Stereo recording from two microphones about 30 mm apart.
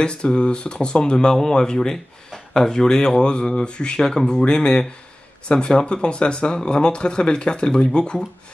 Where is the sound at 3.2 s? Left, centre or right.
Left.